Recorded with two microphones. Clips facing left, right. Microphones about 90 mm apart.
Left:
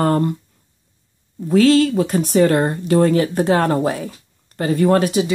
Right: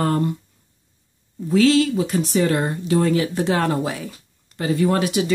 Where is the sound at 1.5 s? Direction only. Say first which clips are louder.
Left 3 dB; 45° left (ahead or behind).